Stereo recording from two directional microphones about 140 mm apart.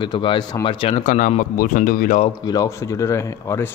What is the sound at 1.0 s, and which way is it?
A man's voice, 65° left (ahead or behind).